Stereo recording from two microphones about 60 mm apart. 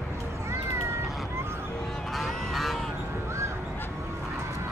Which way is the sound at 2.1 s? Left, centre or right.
Centre.